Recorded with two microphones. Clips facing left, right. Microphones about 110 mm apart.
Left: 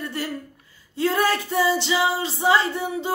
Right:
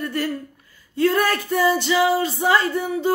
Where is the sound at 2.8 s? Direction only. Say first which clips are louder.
Right 5 dB; 20° left (ahead or behind).